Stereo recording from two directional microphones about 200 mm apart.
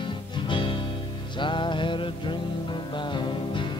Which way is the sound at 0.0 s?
25° left (ahead or behind).